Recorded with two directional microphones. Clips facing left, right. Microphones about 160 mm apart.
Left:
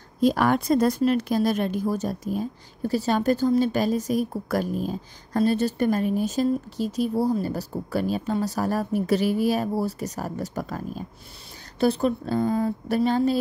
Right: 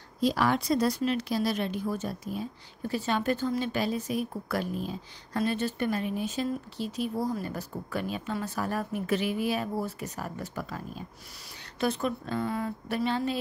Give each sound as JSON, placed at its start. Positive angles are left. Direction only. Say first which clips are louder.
{"t": 0.2, "sound": "a woman's voice", "louder": "left 5 dB", "side_deg": 50}
{"t": 11.8, "sound": "a woman's voice", "louder": "left 7 dB", "side_deg": 35}